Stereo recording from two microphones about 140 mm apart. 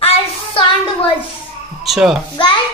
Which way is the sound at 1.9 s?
Centre (ahead or behind).